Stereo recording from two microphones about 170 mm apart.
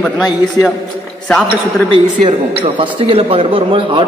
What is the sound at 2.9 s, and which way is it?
Speech, 30° right (ahead or behind).